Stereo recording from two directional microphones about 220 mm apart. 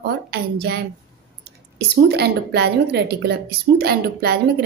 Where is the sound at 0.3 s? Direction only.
50° right (ahead or behind).